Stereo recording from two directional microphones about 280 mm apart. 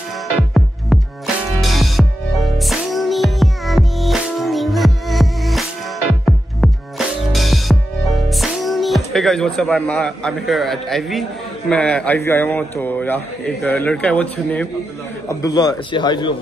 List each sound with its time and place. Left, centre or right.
0.6 s music: centre
8.3 s a man's voice: centre